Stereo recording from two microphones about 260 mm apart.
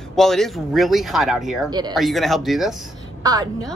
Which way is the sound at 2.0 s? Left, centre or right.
Centre.